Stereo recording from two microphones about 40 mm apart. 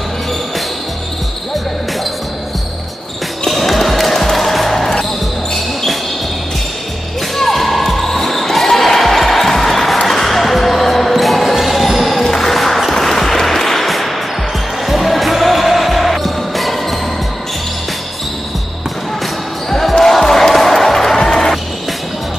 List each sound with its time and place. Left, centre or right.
3.4 s basketball bounce: centre
7.3 s basketball bounce: centre
19.7 s basketball bounce: centre
21.2 s music: centre